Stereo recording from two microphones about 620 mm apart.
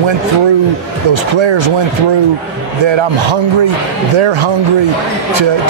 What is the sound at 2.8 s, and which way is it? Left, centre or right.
A man's voice, right.